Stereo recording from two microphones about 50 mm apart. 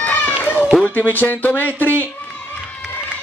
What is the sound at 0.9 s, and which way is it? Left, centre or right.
Speech, left.